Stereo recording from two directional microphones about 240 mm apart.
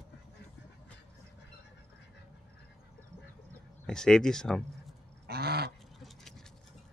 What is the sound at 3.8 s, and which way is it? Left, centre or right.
Speech, centre.